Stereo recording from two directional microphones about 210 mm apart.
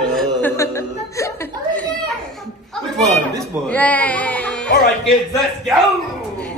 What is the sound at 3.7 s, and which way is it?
Speech, 5° left (ahead or behind).